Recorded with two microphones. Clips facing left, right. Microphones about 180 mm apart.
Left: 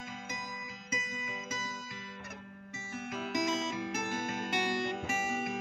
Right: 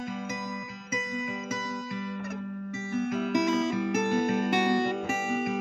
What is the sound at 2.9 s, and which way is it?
Music, 60° right (ahead or behind).